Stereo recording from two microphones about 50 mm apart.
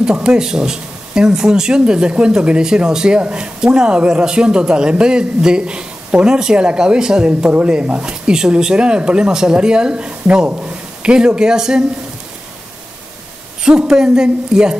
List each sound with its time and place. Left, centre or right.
0.0 s speech: centre
7.2 s speech: right
13.7 s speech: centre